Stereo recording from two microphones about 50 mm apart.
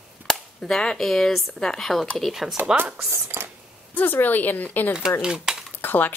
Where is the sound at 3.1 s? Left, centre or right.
Right.